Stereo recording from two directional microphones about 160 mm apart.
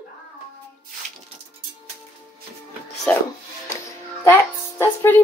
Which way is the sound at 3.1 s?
10° left (ahead or behind).